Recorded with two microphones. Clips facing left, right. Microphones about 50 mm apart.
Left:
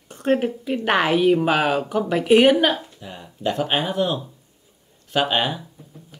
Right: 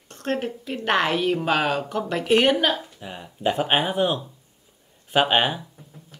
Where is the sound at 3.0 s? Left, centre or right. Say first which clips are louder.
Right 1 dB; centre.